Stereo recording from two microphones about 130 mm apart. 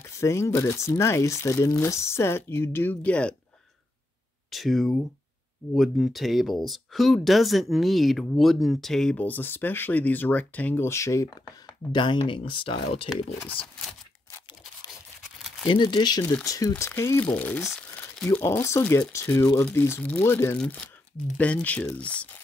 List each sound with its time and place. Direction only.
0.0 s speech: 20° left (ahead or behind)
4.5 s speech: centre (ahead or behind); by 13.1 s 45° left (ahead or behind)
15.6 s speech: 35° left (ahead or behind); by 22.4 s 10° left (ahead or behind)